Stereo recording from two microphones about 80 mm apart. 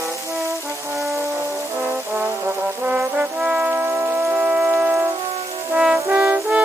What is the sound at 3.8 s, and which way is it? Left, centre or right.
Music, right.